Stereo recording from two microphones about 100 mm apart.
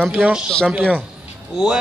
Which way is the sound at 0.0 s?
10° right (ahead or behind).